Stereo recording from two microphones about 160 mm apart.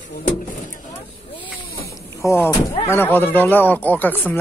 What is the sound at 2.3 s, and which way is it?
Speech, 15° left (ahead or behind).